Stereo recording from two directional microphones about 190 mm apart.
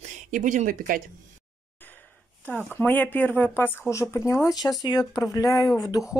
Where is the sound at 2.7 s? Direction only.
10° left (ahead or behind).